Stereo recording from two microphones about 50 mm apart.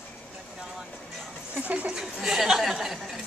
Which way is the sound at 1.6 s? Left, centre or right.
Right.